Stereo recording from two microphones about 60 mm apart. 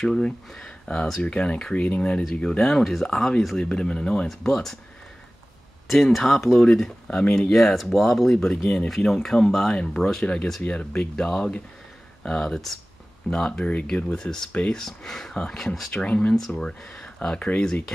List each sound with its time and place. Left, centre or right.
0.0 s speech: centre
2.2 s speech: centre
5.9 s speech: centre
10.2 s speech: left
14.1 s speech: centre